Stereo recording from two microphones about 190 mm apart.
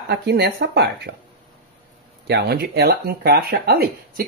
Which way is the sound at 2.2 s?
60° right (ahead or behind).